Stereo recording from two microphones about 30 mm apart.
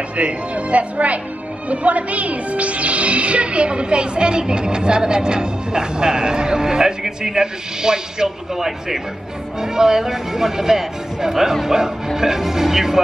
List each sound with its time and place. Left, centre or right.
0.1 s speech: right; by 13.0 s centre